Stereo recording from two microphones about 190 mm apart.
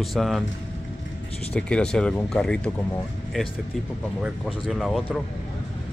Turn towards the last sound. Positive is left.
turn(degrees=0)  # may be behind; listen again after turning